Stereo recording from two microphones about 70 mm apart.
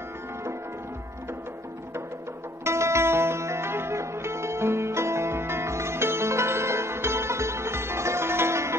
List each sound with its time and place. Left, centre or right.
2.6 s music: right